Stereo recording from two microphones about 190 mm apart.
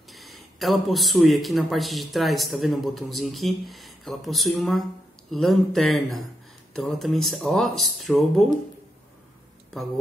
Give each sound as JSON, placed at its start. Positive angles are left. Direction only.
{"t": 0.1, "sound": "speech", "side_deg": 0}